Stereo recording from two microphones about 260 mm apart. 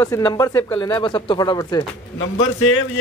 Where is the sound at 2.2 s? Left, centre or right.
Left.